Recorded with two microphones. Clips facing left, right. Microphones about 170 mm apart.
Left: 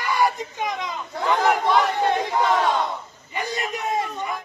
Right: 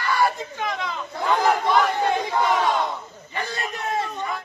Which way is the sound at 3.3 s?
15° left (ahead or behind).